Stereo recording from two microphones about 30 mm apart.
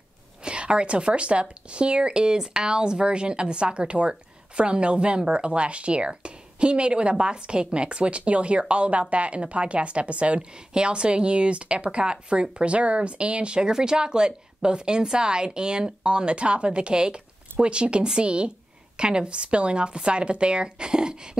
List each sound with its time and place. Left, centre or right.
0.4 s a woman's voice: right
10.7 s a woman's voice: right
13.7 s a woman's voice: right